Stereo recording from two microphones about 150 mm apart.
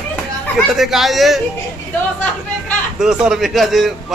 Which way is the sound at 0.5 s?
Centre (ahead or behind).